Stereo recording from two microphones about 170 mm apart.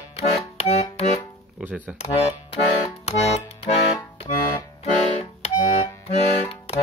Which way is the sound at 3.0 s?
40° left (ahead or behind).